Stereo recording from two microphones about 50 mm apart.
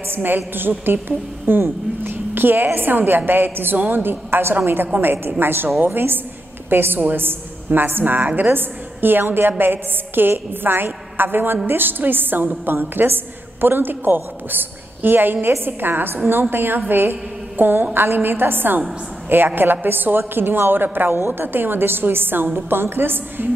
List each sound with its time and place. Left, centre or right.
0.1 s a woman's voice: right